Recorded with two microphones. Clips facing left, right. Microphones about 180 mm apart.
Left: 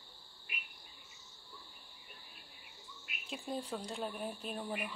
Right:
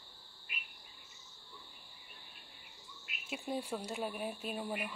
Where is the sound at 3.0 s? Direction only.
5° right (ahead or behind).